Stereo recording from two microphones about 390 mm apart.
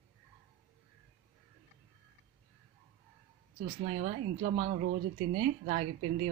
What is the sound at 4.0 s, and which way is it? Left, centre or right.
A woman's voice, centre.